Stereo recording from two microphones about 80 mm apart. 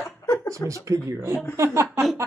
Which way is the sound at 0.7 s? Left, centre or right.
Right.